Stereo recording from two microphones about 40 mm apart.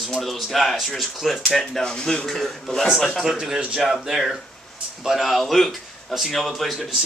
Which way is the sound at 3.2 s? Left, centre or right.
Centre.